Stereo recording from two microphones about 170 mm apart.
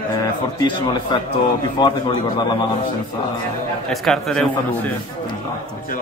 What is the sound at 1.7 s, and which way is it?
Speech, 25° left (ahead or behind).